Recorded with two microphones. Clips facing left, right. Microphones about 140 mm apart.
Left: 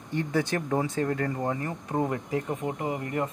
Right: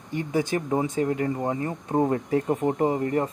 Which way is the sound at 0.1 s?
15° right (ahead or behind).